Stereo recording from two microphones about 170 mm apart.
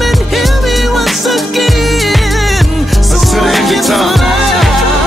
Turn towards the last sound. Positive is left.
turn(degrees=0)  # may be behind; listen again after turning